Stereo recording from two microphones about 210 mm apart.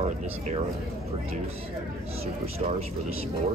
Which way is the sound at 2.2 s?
30° right (ahead or behind).